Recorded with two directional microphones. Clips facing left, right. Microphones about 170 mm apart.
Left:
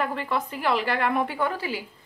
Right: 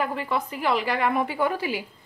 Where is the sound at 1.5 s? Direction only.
15° right (ahead or behind).